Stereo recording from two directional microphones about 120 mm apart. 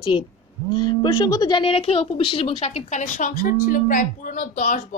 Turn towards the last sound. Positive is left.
turn(degrees=90)